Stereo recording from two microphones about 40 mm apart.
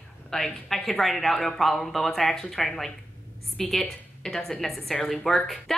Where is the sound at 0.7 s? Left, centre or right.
Centre.